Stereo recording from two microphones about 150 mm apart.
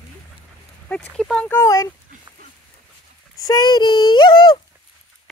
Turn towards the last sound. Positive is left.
turn(degrees=30)  # may be behind; listen again after turning